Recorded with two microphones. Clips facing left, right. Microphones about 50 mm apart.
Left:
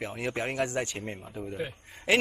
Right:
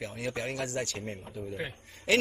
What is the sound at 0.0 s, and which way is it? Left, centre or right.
Speech, left.